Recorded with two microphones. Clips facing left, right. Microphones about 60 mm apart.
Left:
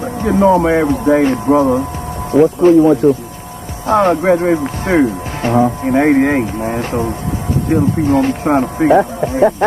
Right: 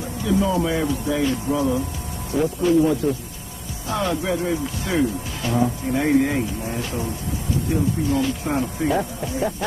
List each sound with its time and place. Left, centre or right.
0.2 s speech: left